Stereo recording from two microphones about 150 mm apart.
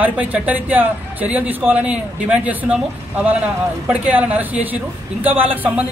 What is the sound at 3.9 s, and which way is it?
Speech, 10° right (ahead or behind).